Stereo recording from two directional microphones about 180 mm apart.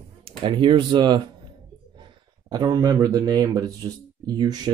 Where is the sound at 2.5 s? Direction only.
20° right (ahead or behind).